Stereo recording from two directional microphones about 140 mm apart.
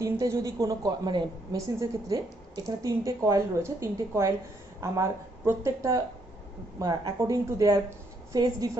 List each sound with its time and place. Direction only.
0.0 s a woman's voice: 25° right (ahead or behind)